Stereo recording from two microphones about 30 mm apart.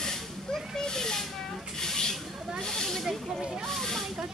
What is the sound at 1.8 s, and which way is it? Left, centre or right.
Rub, centre.